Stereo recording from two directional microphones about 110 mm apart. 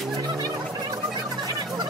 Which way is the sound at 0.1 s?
40° right (ahead or behind).